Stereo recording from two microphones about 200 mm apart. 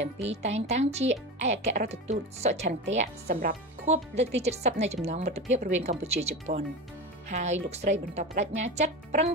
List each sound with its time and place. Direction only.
0.2 s speech: 35° right (ahead or behind)